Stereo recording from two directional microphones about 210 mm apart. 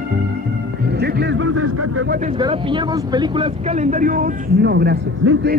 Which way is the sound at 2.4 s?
25° right (ahead or behind).